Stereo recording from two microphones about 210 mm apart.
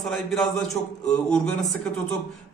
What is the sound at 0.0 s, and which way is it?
Speech, centre (ahead or behind).